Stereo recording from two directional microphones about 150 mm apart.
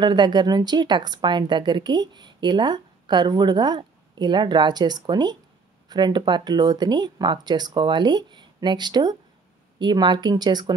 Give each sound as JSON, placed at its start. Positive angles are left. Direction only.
{"t": 0.0, "sound": "a woman's voice", "side_deg": -30}